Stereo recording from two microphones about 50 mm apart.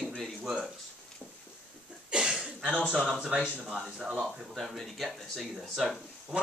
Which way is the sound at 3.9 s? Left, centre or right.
Centre.